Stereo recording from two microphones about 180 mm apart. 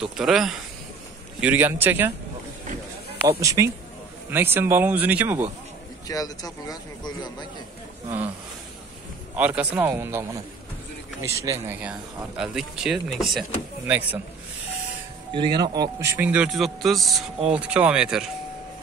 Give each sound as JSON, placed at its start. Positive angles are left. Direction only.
{"t": 0.0, "sound": "speech", "side_deg": 0}
{"t": 3.3, "sound": "speech", "side_deg": -15}
{"t": 6.0, "sound": "speech", "side_deg": 20}
{"t": 9.3, "sound": "speech", "side_deg": -10}
{"t": 15.3, "sound": "speech", "side_deg": -25}